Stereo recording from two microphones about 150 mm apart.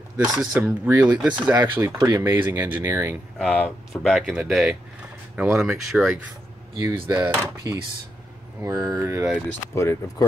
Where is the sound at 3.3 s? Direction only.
Centre (ahead or behind).